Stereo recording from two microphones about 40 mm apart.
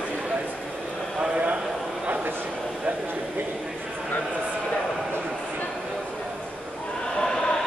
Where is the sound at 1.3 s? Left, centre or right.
Right.